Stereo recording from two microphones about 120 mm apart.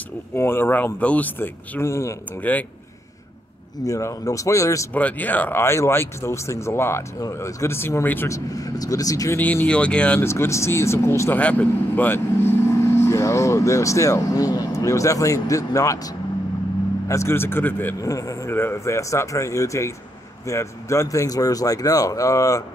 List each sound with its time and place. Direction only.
0.3 s speech: 20° left (ahead or behind)
2.4 s speech: 15° left (ahead or behind)
3.8 s speech: 25° left (ahead or behind)
4.9 s speech: 15° left (ahead or behind)
8.5 s speech: 30° left (ahead or behind)
9.4 s speech: 15° left (ahead or behind)
10.2 s speech: 20° left (ahead or behind)
12.8 s speech: 25° left (ahead or behind)
17.1 s speech: 20° left (ahead or behind)
18.0 s speech: 25° left (ahead or behind)